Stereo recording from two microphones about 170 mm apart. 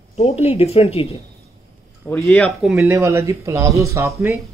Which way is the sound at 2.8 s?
15° right (ahead or behind).